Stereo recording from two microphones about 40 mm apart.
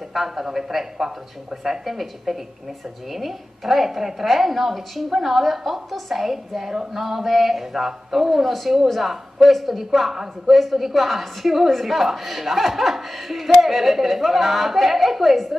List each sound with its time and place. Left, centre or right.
0.1 s a woman's voice: centre